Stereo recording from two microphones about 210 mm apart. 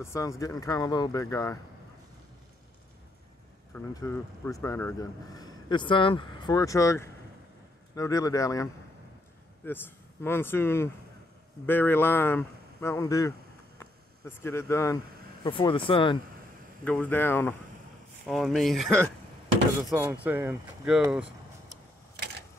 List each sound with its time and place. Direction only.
0.0 s speech: 15° left (ahead or behind)
3.7 s speech: 10° left (ahead or behind)
9.7 s speech: 10° left (ahead or behind)
16.8 s speech: 5° left (ahead or behind)
19.9 s speech: 10° right (ahead or behind)